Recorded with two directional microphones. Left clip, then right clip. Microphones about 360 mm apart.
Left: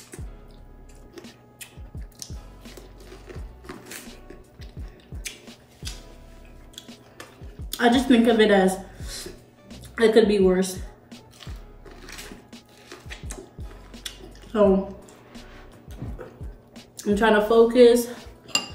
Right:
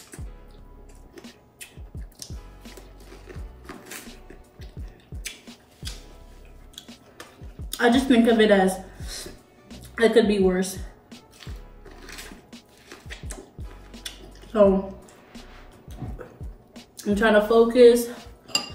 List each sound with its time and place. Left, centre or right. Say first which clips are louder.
2.1 s music: left 1 dB; centre
6.7 s finger snapping: even; centre
7.7 s a sound: even; centre
12.0 s toilet flush: even; centre
13.9 s a sound: left 1 dB; centre
16.2 s music: left 3 dB; centre
16.7 s dishes: left 2 dB; centre